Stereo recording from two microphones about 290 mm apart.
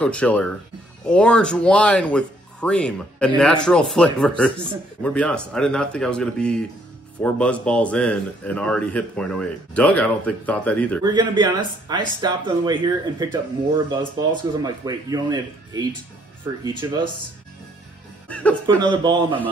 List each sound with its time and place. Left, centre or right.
0.0 s speech: centre
11.1 s speech: centre
18.3 s speech: centre
18.8 s speech: centre